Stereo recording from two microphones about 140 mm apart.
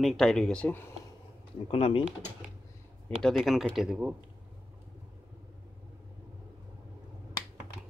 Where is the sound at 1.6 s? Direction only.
40° left (ahead or behind).